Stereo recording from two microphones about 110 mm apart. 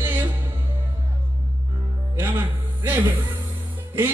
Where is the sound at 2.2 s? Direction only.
20° right (ahead or behind).